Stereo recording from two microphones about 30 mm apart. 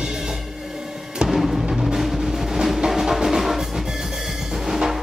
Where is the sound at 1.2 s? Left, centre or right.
Centre.